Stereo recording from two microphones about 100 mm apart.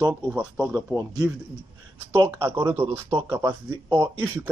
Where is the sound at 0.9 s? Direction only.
30° right (ahead or behind).